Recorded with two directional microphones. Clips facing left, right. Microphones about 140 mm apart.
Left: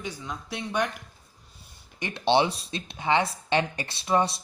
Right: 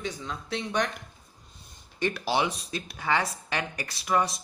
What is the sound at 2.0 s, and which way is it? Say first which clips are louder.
Speech: left 4 dB; 25° left (ahead or behind).